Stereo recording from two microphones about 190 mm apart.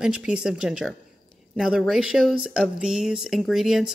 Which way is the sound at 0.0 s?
5° right (ahead or behind).